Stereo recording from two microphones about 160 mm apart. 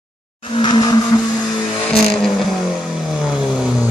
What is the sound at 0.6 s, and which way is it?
Vehicle, 25° left (ahead or behind).